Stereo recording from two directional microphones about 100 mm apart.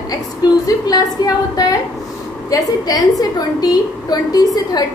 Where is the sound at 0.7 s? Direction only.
40° left (ahead or behind).